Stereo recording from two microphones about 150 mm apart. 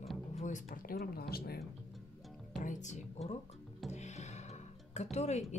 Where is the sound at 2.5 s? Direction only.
60° left (ahead or behind).